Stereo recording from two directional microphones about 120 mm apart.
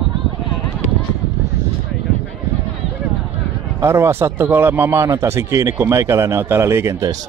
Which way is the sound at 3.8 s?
20° right (ahead or behind).